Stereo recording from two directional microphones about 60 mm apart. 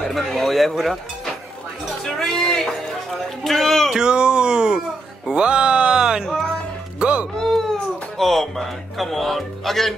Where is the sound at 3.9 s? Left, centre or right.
Centre.